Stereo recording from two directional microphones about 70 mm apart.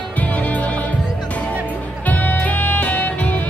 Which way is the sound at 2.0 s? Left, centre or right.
Left.